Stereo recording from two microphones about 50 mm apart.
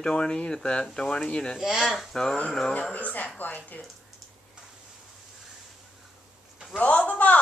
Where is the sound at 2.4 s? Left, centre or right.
Centre.